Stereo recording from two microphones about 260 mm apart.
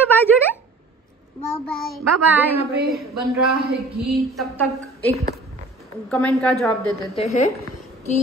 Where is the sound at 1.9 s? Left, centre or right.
Centre.